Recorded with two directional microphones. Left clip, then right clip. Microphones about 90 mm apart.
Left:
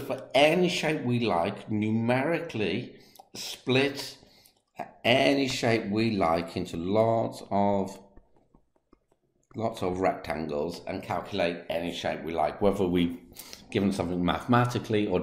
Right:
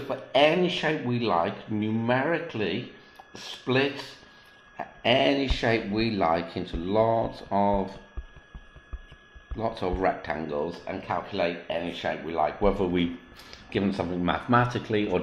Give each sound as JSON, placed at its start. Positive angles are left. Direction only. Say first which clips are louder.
{"t": 0.0, "sound": "speech", "louder": "right 1 dB", "side_deg": 40}
{"t": 9.6, "sound": "speech", "louder": "right 1 dB", "side_deg": 45}